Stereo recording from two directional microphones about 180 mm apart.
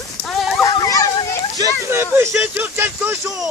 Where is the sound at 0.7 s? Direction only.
20° left (ahead or behind).